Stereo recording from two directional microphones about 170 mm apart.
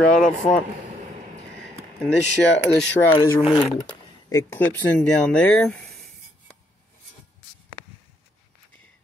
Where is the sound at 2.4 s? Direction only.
90° left.